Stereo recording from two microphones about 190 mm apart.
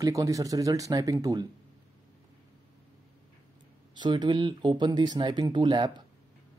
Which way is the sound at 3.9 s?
25° right (ahead or behind).